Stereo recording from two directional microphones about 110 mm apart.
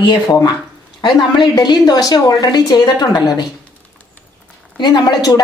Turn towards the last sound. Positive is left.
turn(degrees=40)  # may be behind; listen again after turning